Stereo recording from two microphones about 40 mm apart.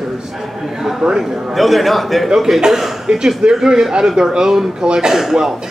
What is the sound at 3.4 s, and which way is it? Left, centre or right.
Speech, right.